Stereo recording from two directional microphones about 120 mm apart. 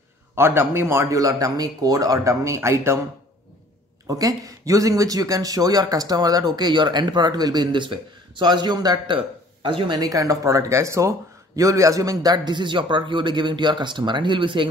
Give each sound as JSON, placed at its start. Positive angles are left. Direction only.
{"t": 0.4, "sound": "a man's voice", "side_deg": -20}
{"t": 4.1, "sound": "speech", "side_deg": -30}